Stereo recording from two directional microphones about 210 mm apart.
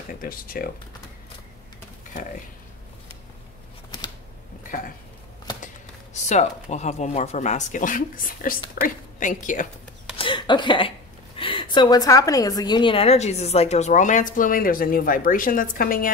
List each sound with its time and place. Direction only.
0.2 s speech: 45° left (ahead or behind)
6.1 s a woman's voice: 35° left (ahead or behind)
10.1 s a sound: 25° left (ahead or behind)
11.3 s a woman's voice: 25° left (ahead or behind); by 16.1 s 40° left (ahead or behind)